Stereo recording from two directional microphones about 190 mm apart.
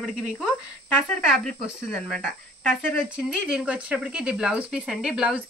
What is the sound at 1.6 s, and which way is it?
Speech, centre (ahead or behind).